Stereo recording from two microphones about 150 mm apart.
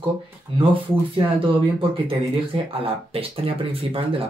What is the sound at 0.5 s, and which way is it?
Speech, 35° right (ahead or behind).